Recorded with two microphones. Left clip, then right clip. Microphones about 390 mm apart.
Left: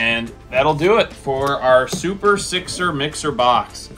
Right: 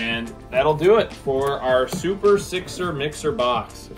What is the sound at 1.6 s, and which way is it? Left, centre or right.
Speech, left.